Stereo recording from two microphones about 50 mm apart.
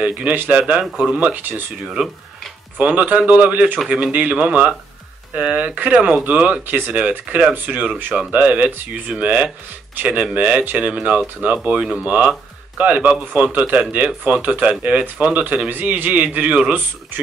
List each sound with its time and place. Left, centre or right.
0.0 s a man's voice: right
0.5 s speech: right
1.3 s speech: right
2.8 s a man's voice: right
6.6 s speech: right
6.9 s a man's voice: right